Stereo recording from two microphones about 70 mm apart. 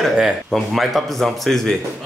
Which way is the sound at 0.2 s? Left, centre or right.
Centre.